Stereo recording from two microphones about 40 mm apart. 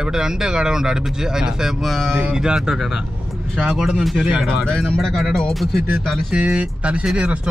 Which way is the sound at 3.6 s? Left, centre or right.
Centre.